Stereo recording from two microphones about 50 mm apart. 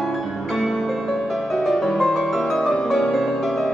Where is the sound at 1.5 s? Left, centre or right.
Centre.